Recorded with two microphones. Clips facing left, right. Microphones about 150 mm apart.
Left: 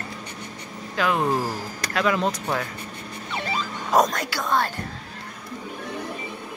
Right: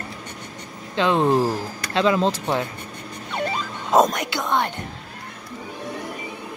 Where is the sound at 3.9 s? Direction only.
20° right (ahead or behind).